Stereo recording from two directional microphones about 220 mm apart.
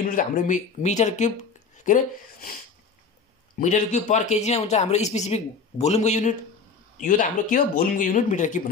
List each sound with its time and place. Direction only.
0.1 s speech: 35° left (ahead or behind)
3.5 s speech: 35° left (ahead or behind)